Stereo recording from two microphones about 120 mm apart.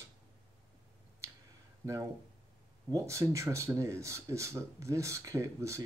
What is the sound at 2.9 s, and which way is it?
Speech, 25° right (ahead or behind).